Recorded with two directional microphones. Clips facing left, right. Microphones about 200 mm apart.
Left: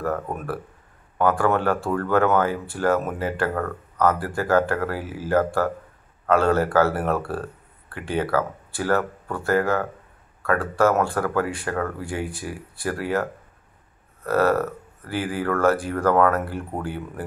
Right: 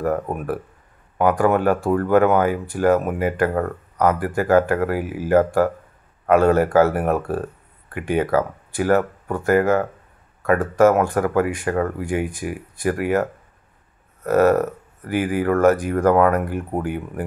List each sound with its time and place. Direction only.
0.0 s speech: 15° right (ahead or behind)